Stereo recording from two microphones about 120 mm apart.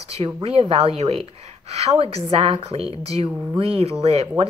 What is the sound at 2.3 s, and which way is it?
Speech, 55° right (ahead or behind).